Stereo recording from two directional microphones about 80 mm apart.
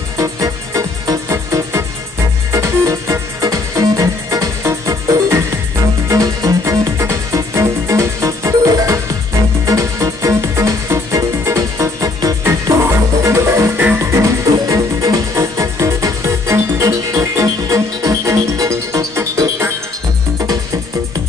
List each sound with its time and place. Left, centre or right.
0.2 s music: right
1.3 s music: right